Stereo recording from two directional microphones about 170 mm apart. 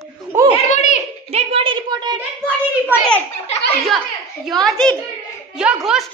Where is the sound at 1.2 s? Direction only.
35° right (ahead or behind).